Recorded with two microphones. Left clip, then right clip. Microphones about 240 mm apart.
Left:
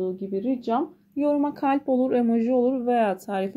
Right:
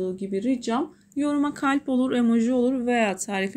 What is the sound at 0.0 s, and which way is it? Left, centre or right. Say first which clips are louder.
Speech: even; right.